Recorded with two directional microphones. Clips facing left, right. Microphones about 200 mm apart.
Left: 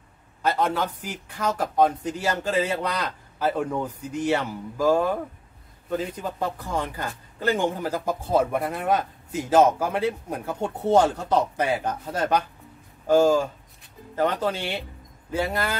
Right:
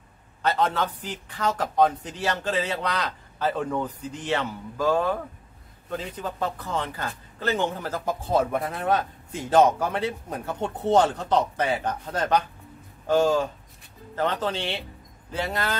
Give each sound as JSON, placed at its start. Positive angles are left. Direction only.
{"t": 0.4, "sound": "a man's voice", "side_deg": 10}